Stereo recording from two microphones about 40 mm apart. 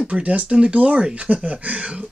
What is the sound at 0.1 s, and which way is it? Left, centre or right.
Speech, right.